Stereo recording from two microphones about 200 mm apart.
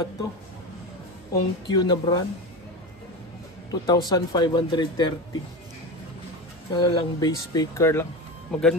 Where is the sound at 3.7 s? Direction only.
20° left (ahead or behind).